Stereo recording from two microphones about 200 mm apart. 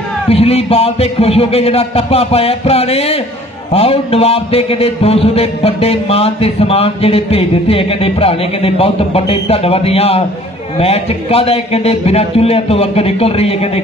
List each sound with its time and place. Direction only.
0.3 s a man's voice: 30° left (ahead or behind)